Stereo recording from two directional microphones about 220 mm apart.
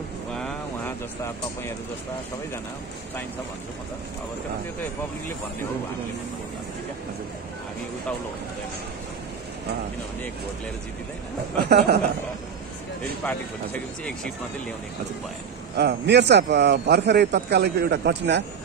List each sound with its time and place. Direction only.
0.3 s a sound: 5° left (ahead or behind)
11.5 s speech: 45° right (ahead or behind)
15.7 s speech: 50° right (ahead or behind)